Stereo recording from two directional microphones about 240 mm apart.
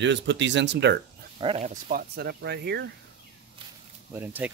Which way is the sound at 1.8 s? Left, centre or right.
Right.